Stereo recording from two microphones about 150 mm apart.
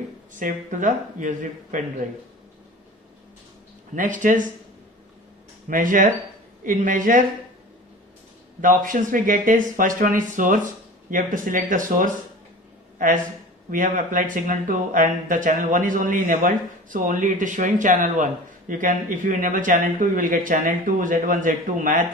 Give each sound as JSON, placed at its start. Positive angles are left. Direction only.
{"t": 0.3, "sound": "speech", "side_deg": -60}
{"t": 3.9, "sound": "speech", "side_deg": -60}
{"t": 5.7, "sound": "speech", "side_deg": -60}
{"t": 8.5, "sound": "speech", "side_deg": -60}
{"t": 13.7, "sound": "speech", "side_deg": -60}